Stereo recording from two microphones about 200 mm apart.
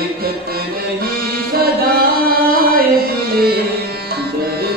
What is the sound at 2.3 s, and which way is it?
Music, 50° right (ahead or behind).